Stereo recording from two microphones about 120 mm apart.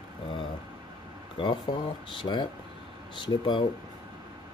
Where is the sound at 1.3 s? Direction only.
45° left (ahead or behind).